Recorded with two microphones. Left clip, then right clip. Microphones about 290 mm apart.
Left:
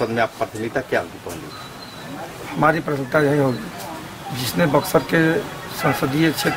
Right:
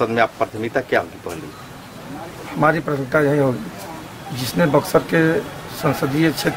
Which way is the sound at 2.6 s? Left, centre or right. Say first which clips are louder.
Right 1 dB; centre.